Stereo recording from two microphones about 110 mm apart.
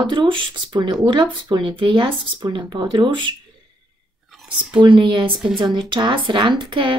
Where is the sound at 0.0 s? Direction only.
45° right (ahead or behind).